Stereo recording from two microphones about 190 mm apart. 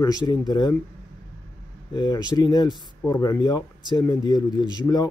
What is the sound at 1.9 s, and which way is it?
Speech, 20° left (ahead or behind).